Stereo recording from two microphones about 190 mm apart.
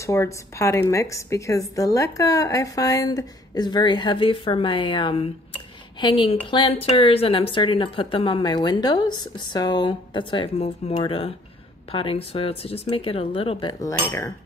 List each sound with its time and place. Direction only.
0.0 s a woman's voice: 15° left (ahead or behind)